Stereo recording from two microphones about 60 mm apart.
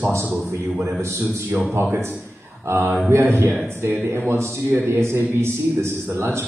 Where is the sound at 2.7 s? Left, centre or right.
Right.